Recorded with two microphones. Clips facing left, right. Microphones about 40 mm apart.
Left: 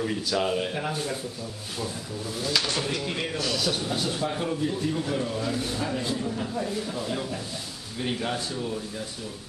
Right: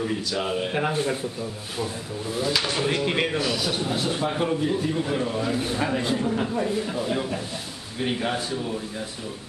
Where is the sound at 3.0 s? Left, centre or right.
Right.